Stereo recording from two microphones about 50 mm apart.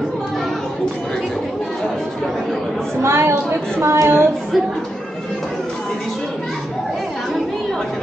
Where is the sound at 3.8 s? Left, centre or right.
Right.